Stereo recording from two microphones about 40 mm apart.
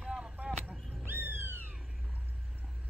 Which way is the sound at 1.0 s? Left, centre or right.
Right.